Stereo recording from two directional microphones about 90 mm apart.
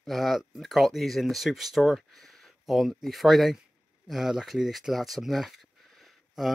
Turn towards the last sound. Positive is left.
turn(degrees=-5)  # may be behind; listen again after turning